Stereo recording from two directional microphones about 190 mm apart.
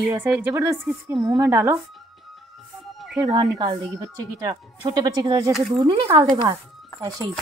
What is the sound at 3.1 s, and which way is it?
Speech, 20° right (ahead or behind).